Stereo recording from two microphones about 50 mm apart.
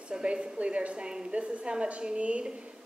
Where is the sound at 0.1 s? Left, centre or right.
Centre.